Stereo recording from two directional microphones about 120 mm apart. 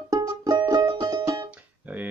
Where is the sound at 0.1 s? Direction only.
25° right (ahead or behind).